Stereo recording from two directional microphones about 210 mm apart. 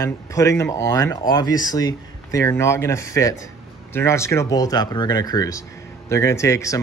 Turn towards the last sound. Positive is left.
turn(degrees=15)  # may be behind; listen again after turning